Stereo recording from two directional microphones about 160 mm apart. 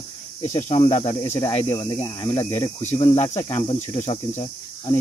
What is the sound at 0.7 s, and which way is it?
Speech, 35° left (ahead or behind).